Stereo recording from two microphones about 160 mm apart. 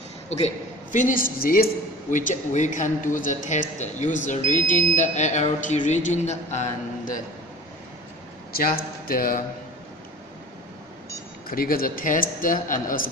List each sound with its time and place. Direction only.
0.9 s a man's voice: 55° left (ahead or behind)
1.4 s speech: 65° left (ahead or behind); by 7.2 s 45° left (ahead or behind)
8.5 s a man's voice: 65° left (ahead or behind)
11.4 s a man's voice: 65° left (ahead or behind)